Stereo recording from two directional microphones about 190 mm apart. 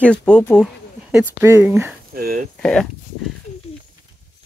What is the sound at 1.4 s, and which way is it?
Speech, 10° right (ahead or behind).